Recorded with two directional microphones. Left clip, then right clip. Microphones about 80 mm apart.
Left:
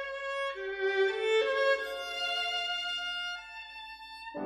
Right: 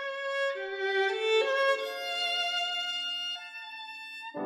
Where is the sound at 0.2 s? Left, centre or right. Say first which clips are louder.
Right 5 dB; right.